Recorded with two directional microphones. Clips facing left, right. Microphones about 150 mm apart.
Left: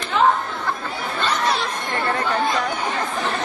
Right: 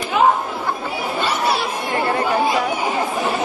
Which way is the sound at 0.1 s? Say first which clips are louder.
Right 2 dB; 10° right (ahead or behind).